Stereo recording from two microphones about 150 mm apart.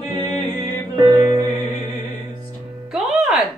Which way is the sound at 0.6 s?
25° right (ahead or behind).